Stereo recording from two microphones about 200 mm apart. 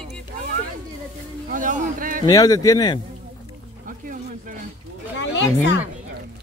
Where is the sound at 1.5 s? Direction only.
40° right (ahead or behind).